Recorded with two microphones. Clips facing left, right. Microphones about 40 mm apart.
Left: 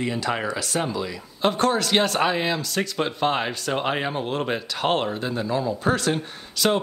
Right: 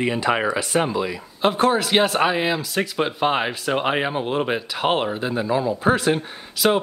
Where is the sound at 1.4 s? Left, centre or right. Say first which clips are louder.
Right 3 dB; centre.